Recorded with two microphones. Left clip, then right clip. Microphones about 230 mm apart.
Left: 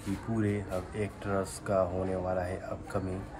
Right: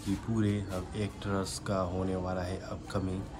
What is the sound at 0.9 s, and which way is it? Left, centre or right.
Speech, centre.